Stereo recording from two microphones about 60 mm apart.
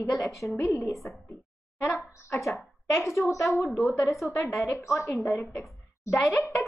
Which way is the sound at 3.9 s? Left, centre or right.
Left.